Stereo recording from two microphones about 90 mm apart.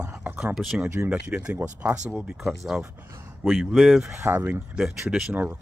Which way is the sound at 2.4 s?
Centre (ahead or behind).